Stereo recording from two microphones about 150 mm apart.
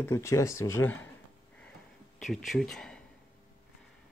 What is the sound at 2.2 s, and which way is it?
Speech, centre (ahead or behind).